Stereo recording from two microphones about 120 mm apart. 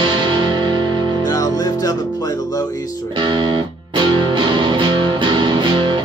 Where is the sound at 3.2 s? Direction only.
40° right (ahead or behind).